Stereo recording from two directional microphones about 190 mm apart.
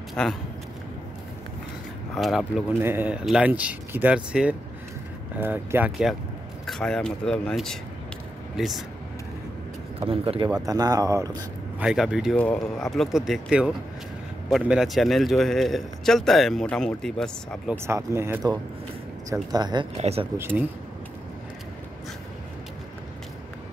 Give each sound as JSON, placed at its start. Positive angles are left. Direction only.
{"t": 0.1, "sound": "speech", "side_deg": 0}
{"t": 2.1, "sound": "speech", "side_deg": 0}
{"t": 2.8, "sound": "speech", "side_deg": -10}
{"t": 10.0, "sound": "speech", "side_deg": -30}
{"t": 11.8, "sound": "speech", "side_deg": -5}
{"t": 17.8, "sound": "speech", "side_deg": -15}
{"t": 19.5, "sound": "speech", "side_deg": -20}
{"t": 20.0, "sound": "speech", "side_deg": -35}
{"t": 20.3, "sound": "speech", "side_deg": -10}